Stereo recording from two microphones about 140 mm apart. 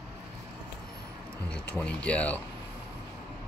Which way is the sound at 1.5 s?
10° left (ahead or behind).